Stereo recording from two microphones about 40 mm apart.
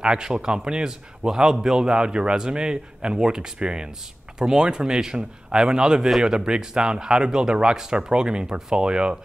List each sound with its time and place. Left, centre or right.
0.0 s a man's voice: right